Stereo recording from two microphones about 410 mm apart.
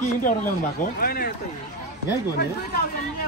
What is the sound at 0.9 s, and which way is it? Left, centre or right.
Speech, left.